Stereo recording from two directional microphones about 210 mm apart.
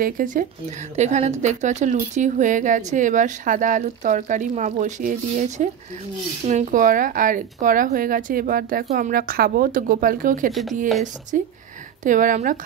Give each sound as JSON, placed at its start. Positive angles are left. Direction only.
{"t": 0.0, "sound": "a woman's voice", "side_deg": -40}
{"t": 10.5, "sound": "speech", "side_deg": 0}
{"t": 11.3, "sound": "a woman's voice", "side_deg": -40}